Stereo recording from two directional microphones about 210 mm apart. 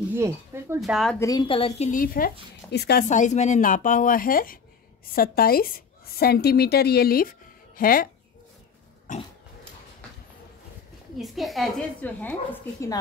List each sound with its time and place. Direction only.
0.1 s a sound: 10° right (ahead or behind)
0.7 s a woman's voice: centre (ahead or behind)
1.2 s a woman's voice: 20° left (ahead or behind)
1.9 s a woman's voice: 40° left (ahead or behind)
3.1 s a woman's voice: 35° left (ahead or behind)
9.1 s pig: 35° left (ahead or behind)
11.1 s a woman's voice: centre (ahead or behind)